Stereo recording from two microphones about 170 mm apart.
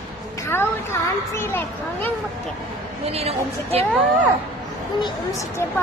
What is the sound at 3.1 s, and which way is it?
Speech, 35° right (ahead or behind).